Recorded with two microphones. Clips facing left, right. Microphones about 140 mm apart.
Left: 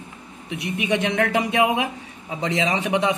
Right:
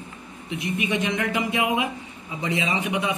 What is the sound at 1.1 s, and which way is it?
A man's voice, 85° left.